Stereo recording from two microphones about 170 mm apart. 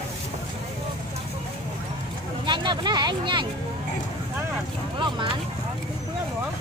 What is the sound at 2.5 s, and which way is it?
Speech, 25° right (ahead or behind).